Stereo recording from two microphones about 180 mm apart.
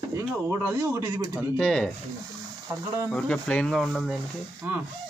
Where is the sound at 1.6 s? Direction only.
5° left (ahead or behind).